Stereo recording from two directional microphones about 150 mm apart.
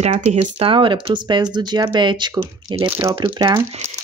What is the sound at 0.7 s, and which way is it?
Speech, 35° right (ahead or behind).